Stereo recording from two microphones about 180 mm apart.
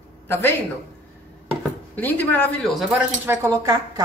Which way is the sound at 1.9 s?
10° left (ahead or behind).